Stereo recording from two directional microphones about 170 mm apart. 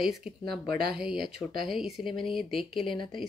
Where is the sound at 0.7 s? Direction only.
65° right (ahead or behind).